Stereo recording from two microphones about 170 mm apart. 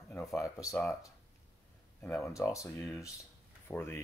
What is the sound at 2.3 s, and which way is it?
Speech, 20° left (ahead or behind).